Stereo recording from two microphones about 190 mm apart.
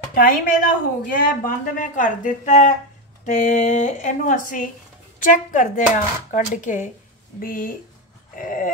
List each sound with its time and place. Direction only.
0.1 s a woman's voice: 50° left (ahead or behind)